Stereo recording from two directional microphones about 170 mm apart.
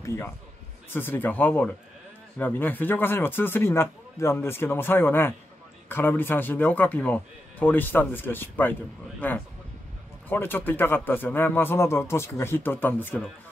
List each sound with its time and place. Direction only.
0.0 s a man's voice: 15° left (ahead or behind)